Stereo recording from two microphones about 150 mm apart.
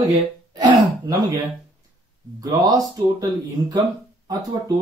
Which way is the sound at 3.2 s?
20° right (ahead or behind).